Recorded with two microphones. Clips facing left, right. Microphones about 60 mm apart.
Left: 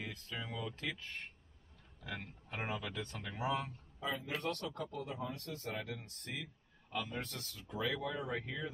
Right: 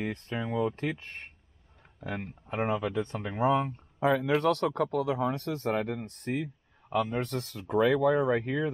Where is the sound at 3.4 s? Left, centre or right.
Right.